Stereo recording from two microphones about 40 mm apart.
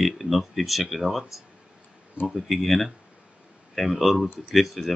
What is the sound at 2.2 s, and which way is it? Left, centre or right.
Speech, right.